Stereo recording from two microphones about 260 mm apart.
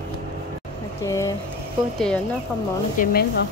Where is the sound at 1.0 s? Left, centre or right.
Centre.